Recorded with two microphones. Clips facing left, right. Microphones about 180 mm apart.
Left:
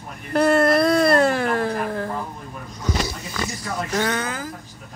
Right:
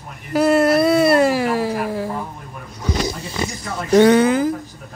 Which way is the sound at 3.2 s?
30° right (ahead or behind).